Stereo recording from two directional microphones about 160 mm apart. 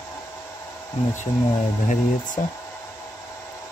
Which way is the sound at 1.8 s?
50° left (ahead or behind).